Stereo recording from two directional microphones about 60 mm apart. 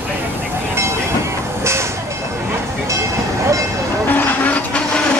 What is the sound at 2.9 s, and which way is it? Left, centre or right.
Vehicle, right.